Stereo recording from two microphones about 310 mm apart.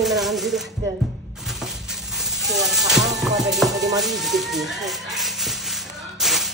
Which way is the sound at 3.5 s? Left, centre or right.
Centre.